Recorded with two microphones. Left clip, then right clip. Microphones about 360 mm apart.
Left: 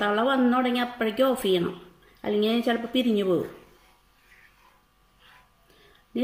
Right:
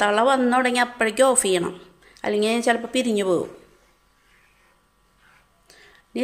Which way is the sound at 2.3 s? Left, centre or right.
Centre.